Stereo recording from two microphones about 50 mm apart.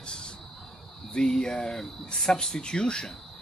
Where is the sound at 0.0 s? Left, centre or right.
Centre.